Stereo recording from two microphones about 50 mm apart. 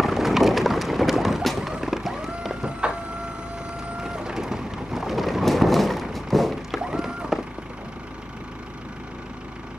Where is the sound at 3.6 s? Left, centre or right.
Centre.